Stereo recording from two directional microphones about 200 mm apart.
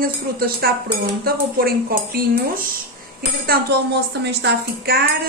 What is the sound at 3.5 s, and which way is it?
A woman's voice, 55° right (ahead or behind).